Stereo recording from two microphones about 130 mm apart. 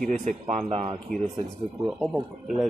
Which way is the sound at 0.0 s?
75° right (ahead or behind).